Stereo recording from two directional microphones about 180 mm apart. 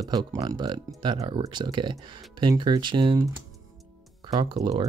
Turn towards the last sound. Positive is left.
turn(degrees=-25)  # may be behind; listen again after turning